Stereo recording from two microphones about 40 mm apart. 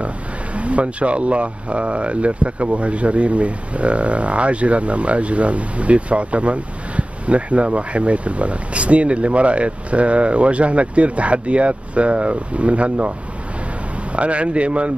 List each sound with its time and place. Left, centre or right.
0.6 s speech: right
14.1 s speech: right